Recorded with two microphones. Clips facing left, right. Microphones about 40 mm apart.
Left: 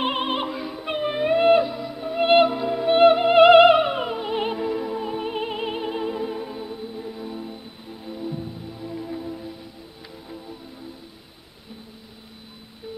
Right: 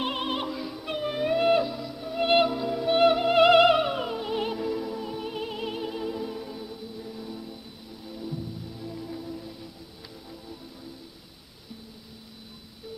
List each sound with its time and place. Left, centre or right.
0.0 s music: left